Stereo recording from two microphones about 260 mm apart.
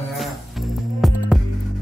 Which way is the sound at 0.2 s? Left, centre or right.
Centre.